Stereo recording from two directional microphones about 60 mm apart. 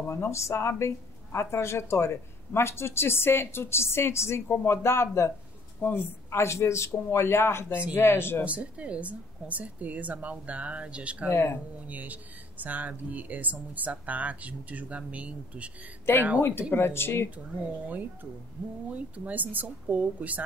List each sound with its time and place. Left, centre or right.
0.1 s speech: left
5.8 s a woman's voice: left
6.3 s speech: left
8.5 s speech: right
11.2 s speech: left
11.9 s speech: right
16.3 s speech: left
18.9 s speech: right